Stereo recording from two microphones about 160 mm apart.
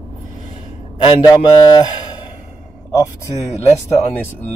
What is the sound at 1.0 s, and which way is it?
Speech, 25° left (ahead or behind).